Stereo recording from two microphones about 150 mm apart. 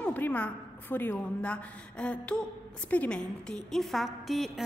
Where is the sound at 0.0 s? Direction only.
10° left (ahead or behind).